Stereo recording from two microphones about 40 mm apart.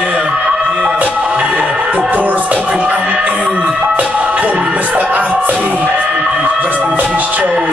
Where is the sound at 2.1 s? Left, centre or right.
Right.